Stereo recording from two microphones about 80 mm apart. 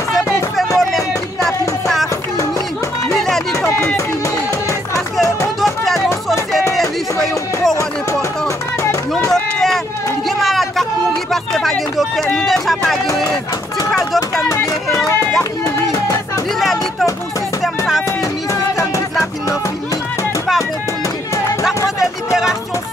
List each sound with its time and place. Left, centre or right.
0.7 s music: centre
3.2 s music: centre
3.6 s music: left
5.6 s music: centre
7.7 s speech: left
9.3 s a sound: centre
11.5 s speech: centre
18.5 s music: left
22.3 s music: centre